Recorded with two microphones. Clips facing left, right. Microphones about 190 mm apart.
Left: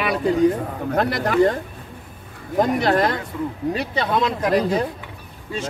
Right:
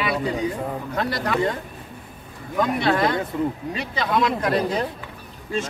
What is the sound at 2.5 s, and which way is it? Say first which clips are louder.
Speech: left 3 dB; 45° left (ahead or behind).